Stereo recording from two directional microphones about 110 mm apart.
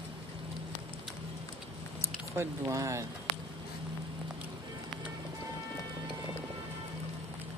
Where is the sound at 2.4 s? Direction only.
25° right (ahead or behind).